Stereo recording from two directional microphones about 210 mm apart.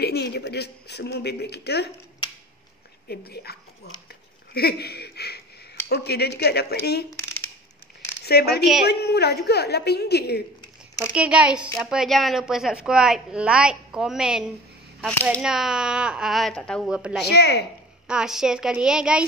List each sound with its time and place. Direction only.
0.0 s a woman's voice: 50° left (ahead or behind)
3.1 s a woman's voice: 50° left (ahead or behind)
4.6 s a woman's voice: 50° left (ahead or behind)
7.1 s a sound: 10° left (ahead or behind)
8.3 s a woman's voice: 50° left (ahead or behind)
11.0 s a woman's voice: 5° right (ahead or behind)
17.3 s a woman's voice: 50° left (ahead or behind)
18.0 s a woman's voice: 5° right (ahead or behind)